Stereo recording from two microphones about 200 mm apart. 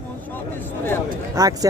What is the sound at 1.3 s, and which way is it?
Speech, 15° right (ahead or behind).